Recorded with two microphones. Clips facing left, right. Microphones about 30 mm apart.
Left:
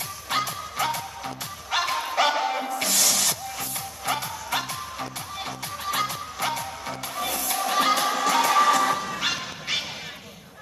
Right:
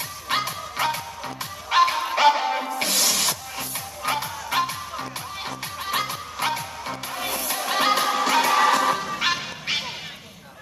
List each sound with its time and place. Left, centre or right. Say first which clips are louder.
0.3 s music: right 1 dB; right
2.3 s music: right 1 dB; centre
2.7 s music: right 1 dB; right
5.9 s music: even; right
6.6 s music: right 1 dB; right
7.8 s music: right 3 dB; right